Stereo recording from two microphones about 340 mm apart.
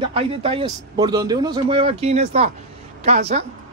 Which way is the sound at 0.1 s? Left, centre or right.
Centre.